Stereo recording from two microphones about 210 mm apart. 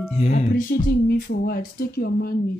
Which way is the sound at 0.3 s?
40° left (ahead or behind).